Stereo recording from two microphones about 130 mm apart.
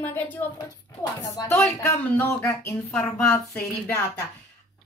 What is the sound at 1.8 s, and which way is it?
A child's voice, 20° left (ahead or behind).